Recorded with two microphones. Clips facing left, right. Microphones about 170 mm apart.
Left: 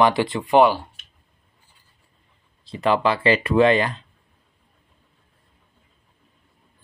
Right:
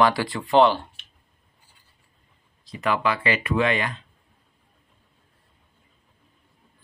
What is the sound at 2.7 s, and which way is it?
Speech, 30° left (ahead or behind).